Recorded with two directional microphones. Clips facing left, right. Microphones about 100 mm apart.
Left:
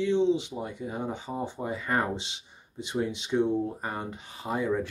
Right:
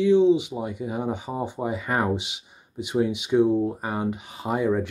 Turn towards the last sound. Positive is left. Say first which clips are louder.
# right 5 dB
turn(degrees=-20)  # may be behind; listen again after turning